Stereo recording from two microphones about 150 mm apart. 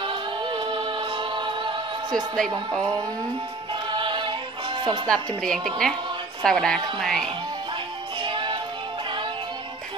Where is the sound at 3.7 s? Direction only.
35° right (ahead or behind).